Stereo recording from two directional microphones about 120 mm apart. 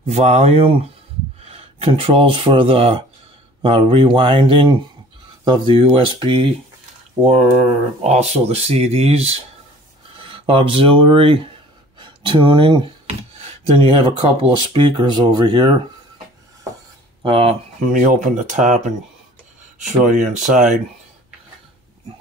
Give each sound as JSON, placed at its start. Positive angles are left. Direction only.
{"t": 0.1, "sound": "speech", "side_deg": -65}
{"t": 8.0, "sound": "speech", "side_deg": -60}
{"t": 13.4, "sound": "speech", "side_deg": -60}
{"t": 17.2, "sound": "speech", "side_deg": -45}
{"t": 17.9, "sound": "speech", "side_deg": -90}